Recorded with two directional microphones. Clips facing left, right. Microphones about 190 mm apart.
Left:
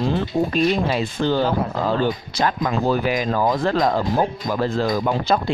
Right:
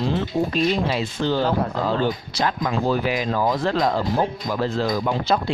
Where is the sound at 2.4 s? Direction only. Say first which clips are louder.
Left 2 dB; 45° left (ahead or behind).